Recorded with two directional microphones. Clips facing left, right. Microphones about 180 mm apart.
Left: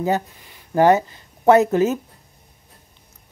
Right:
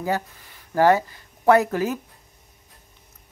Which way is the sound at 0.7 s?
20° left (ahead or behind).